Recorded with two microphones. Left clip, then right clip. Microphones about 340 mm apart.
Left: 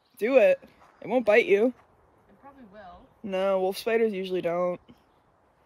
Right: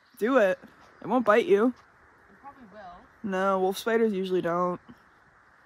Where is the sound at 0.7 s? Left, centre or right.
Centre.